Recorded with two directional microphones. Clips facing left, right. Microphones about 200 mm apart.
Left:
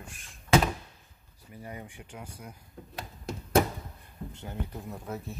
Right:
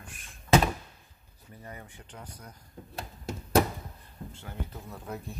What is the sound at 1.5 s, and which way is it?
Speech, 15° left (ahead or behind).